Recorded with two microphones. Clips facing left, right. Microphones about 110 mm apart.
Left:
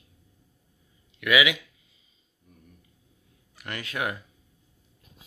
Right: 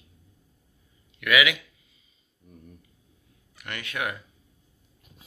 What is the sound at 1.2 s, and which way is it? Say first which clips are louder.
Speech: even; 20° left (ahead or behind).